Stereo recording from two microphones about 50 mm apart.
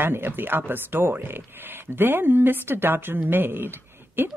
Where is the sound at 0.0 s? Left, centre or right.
Right.